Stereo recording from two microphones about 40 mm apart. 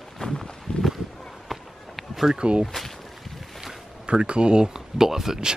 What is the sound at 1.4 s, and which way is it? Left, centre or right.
Run, centre.